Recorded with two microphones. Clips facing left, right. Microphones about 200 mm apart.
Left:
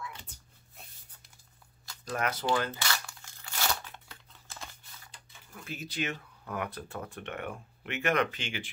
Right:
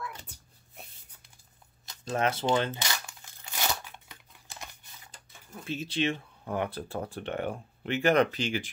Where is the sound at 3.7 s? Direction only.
15° right (ahead or behind).